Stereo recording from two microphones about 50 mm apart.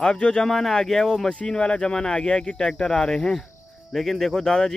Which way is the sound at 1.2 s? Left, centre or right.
Centre.